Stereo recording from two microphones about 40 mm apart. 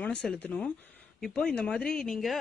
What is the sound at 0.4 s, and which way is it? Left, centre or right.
Speech, left.